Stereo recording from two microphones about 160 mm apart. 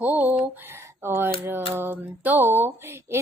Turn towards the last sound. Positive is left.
turn(degrees=-15)  # may be behind; listen again after turning